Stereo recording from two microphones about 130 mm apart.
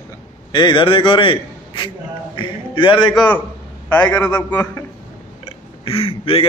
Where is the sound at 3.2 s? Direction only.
10° left (ahead or behind).